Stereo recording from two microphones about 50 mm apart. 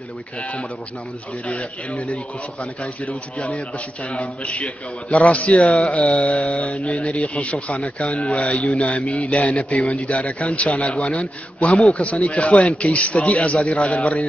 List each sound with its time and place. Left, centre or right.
0.4 s a man's voice: left